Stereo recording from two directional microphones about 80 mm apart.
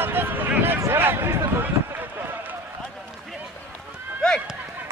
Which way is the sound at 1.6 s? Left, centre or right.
Right.